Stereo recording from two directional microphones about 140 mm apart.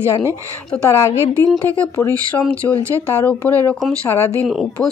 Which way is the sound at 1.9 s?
15° left (ahead or behind).